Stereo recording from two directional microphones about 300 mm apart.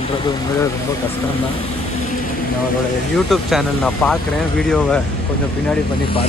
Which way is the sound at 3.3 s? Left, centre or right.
Centre.